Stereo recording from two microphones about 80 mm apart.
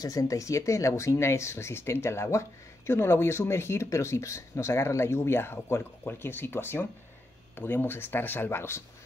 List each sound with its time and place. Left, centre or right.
0.0 s speech: left